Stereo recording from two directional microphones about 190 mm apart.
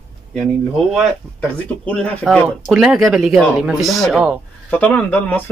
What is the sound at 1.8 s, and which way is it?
Speech, 5° left (ahead or behind).